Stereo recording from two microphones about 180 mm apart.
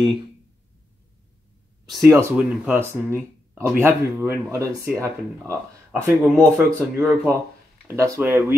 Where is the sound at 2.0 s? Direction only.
15° right (ahead or behind).